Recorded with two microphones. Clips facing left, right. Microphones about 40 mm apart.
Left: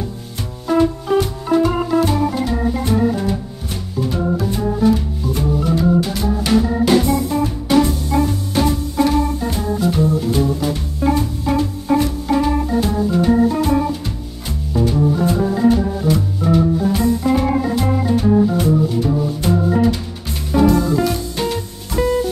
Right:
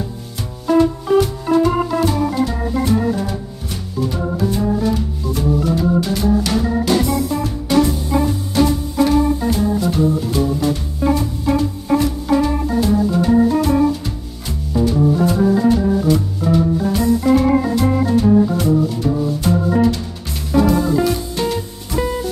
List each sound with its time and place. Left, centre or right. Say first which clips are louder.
0.7 s music: right 2 dB; centre
4.6 s organ: left 4 dB; centre
7.3 s music: left 1 dB; centre
7.9 s music: even; centre
18.0 s organ: even; centre
20.7 s music: even; centre